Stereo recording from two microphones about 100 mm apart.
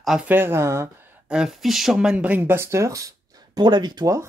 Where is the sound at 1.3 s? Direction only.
5° right (ahead or behind).